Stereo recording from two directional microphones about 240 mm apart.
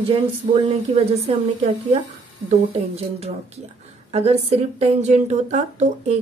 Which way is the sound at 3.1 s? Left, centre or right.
Right.